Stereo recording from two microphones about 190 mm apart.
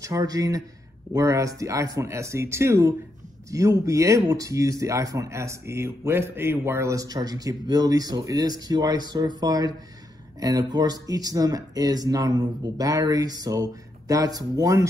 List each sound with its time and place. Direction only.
0.0 s speech: 15° right (ahead or behind)